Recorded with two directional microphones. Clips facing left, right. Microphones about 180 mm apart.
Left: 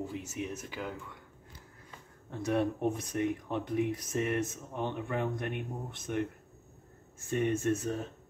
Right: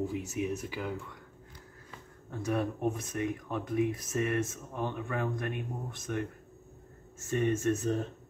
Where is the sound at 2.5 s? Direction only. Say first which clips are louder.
Left 1 dB; 25° left (ahead or behind).